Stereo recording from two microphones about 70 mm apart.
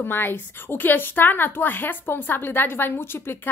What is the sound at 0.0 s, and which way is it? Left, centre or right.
A woman's voice, left.